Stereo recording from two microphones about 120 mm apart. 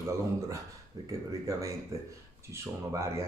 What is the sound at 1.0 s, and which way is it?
Speech, 25° right (ahead or behind).